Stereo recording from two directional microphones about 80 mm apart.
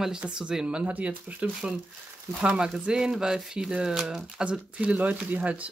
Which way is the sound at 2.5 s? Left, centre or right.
Centre.